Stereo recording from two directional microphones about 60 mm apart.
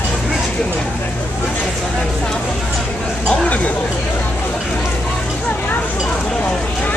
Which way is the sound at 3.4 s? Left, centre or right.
Left.